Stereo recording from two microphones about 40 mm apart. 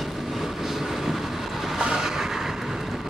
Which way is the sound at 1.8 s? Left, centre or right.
Centre.